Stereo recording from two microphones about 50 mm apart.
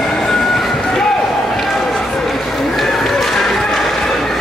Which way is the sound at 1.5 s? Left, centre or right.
Centre.